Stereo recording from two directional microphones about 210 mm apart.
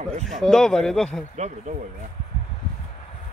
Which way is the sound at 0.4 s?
Centre (ahead or behind).